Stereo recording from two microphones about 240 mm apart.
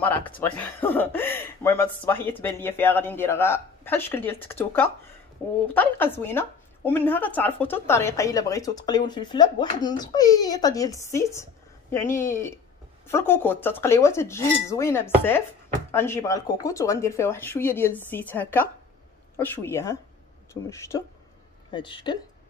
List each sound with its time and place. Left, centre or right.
0.0 s a woman's voice: centre